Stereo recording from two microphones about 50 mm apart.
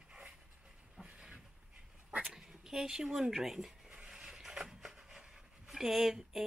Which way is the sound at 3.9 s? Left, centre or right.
Centre.